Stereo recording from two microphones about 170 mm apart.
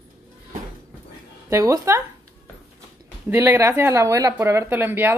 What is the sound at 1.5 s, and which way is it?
Speech, 15° right (ahead or behind).